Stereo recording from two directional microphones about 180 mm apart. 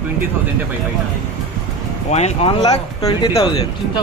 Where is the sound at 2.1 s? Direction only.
40° left (ahead or behind).